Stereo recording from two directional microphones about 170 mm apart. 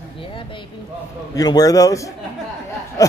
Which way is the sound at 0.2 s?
30° left (ahead or behind).